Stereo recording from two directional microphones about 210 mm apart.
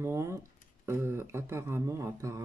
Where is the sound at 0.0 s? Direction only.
15° right (ahead or behind).